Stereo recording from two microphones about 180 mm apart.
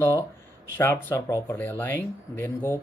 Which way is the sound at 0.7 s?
15° left (ahead or behind).